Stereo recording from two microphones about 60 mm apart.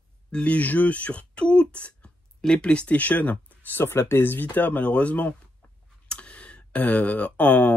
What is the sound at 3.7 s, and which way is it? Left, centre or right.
Speech, left.